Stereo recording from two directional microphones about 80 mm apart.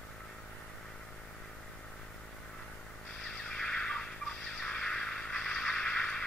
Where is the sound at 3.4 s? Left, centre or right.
Centre.